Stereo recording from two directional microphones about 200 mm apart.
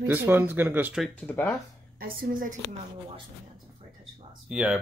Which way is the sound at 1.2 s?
10° left (ahead or behind).